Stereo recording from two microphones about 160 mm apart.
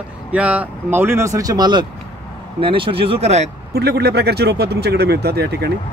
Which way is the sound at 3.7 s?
90° right.